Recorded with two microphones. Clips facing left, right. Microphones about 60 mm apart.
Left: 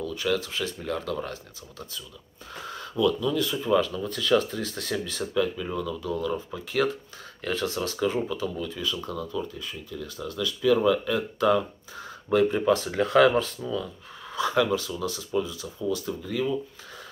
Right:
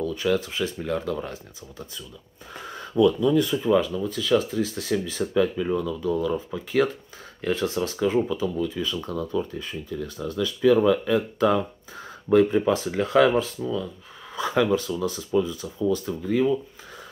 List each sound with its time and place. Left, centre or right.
0.0 s speech: right
7.4 s speech: right
9.5 s speech: right
12.3 s speech: centre
14.3 s speech: centre